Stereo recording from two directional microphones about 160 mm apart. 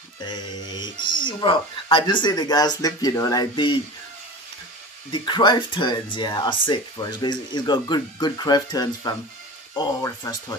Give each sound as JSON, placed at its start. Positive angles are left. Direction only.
{"t": 0.2, "sound": "speech", "side_deg": 25}
{"t": 5.1, "sound": "speech", "side_deg": 30}